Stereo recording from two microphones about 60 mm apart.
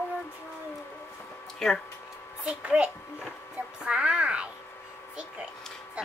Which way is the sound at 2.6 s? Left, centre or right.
Right.